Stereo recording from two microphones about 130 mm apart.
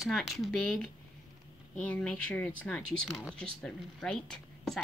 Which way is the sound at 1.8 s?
10° left (ahead or behind).